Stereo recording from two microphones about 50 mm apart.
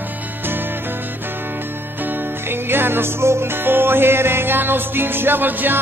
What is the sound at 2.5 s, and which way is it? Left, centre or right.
Music, right.